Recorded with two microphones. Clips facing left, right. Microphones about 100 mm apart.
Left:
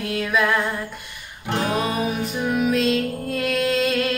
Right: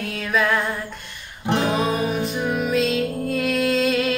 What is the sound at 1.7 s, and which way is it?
Music, centre (ahead or behind).